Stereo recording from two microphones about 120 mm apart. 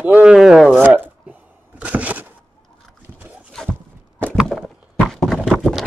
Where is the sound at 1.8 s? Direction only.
10° right (ahead or behind).